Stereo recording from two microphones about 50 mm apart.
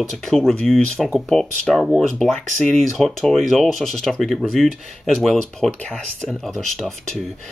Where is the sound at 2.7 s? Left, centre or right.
Centre.